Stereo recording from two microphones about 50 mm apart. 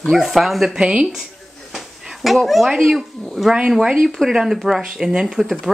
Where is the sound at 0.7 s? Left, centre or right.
Right.